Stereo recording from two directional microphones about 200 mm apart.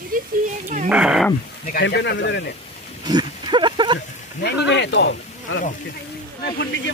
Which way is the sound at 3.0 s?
20° right (ahead or behind).